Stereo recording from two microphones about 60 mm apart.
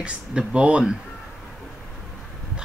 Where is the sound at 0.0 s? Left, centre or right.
Centre.